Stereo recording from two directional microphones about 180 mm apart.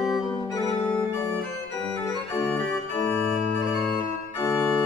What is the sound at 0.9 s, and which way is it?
Organ, 10° left (ahead or behind).